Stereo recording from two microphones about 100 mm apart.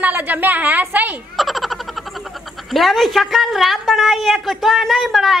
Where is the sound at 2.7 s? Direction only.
Centre (ahead or behind).